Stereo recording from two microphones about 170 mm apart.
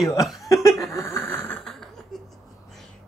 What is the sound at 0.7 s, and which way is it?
Speech, centre (ahead or behind).